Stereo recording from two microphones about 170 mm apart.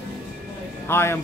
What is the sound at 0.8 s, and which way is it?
Speech, 15° left (ahead or behind).